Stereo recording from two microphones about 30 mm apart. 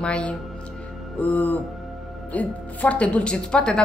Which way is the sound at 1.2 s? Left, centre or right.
Left.